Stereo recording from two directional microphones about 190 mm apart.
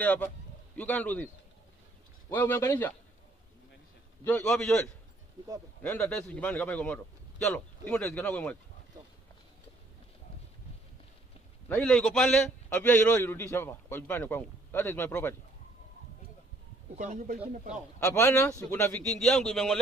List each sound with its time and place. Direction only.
0.0 s a man's voice: 10° left (ahead or behind)
4.2 s a man's voice: 15° left (ahead or behind)
4.5 s a man's voice: 5° left (ahead or behind)
11.7 s a man's voice: 5° left (ahead or behind)
16.9 s speech: 40° right (ahead or behind)
18.0 s a man's voice: 15° left (ahead or behind)